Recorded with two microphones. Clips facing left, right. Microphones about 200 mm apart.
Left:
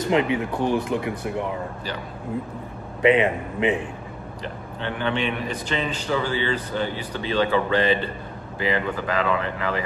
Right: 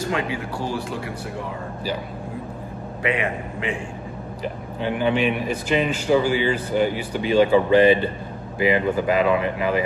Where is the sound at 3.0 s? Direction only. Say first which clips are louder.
Left 6 dB; 20° left (ahead or behind).